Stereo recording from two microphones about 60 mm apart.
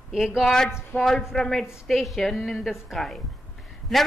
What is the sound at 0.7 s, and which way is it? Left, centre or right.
Speech, left.